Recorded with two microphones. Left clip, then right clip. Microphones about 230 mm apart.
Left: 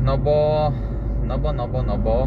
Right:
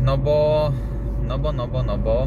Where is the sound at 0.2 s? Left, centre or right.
Centre.